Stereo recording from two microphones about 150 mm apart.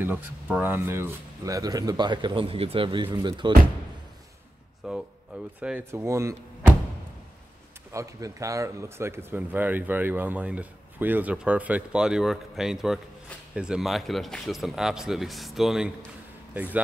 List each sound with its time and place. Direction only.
0.0 s speech: 10° right (ahead or behind); by 3.5 s 30° right (ahead or behind)
4.8 s speech: 5° right (ahead or behind); by 6.3 s 20° right (ahead or behind)
7.9 s speech: 20° right (ahead or behind)